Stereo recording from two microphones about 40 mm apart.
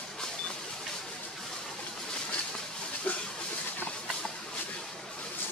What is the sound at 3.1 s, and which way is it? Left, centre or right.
Train, left.